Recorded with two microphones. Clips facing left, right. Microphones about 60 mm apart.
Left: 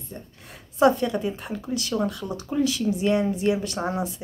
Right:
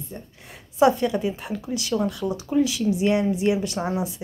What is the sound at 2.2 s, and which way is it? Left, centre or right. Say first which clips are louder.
Speech: right 5 dB; right.